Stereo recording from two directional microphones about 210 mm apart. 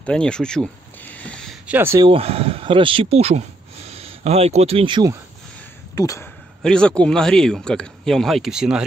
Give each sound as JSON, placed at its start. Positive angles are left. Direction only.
{"t": 0.0, "sound": "a sound", "side_deg": 5}
{"t": 2.0, "sound": "speech", "side_deg": -30}
{"t": 5.9, "sound": "speech", "side_deg": 15}
{"t": 6.6, "sound": "speech", "side_deg": 5}